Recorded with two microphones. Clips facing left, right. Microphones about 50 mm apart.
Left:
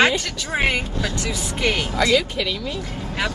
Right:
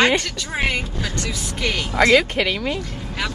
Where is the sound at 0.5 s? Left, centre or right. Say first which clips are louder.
Left 2 dB; centre.